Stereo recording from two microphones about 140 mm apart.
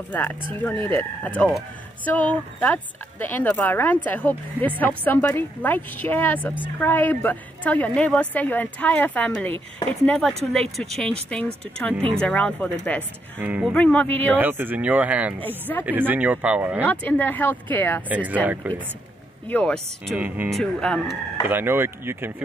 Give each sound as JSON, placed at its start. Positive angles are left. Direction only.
{"t": 0.1, "sound": "speech", "side_deg": 15}
{"t": 10.1, "sound": "speech", "side_deg": 0}
{"t": 13.4, "sound": "speech", "side_deg": -10}
{"t": 13.7, "sound": "speech", "side_deg": 10}
{"t": 14.3, "sound": "speech", "side_deg": -15}
{"t": 15.4, "sound": "speech", "side_deg": 15}
{"t": 15.8, "sound": "speech", "side_deg": -15}
{"t": 16.8, "sound": "speech", "side_deg": 10}
{"t": 18.0, "sound": "speech", "side_deg": -10}
{"t": 19.4, "sound": "speech", "side_deg": 10}
{"t": 20.2, "sound": "speech", "side_deg": -10}
{"t": 20.5, "sound": "speech", "side_deg": 5}
{"t": 21.5, "sound": "speech", "side_deg": -15}